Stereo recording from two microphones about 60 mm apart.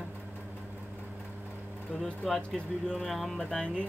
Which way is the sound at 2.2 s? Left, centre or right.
Centre.